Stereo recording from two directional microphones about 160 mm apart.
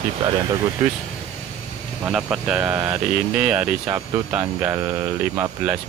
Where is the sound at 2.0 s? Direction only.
5° right (ahead or behind).